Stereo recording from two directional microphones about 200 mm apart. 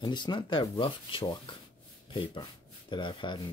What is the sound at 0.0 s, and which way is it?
Speech, 20° left (ahead or behind).